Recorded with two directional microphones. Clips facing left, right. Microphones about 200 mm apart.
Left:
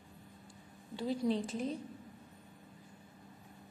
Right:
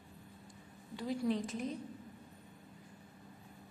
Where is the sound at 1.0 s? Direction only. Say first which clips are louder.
Left 2 dB; 30° left (ahead or behind).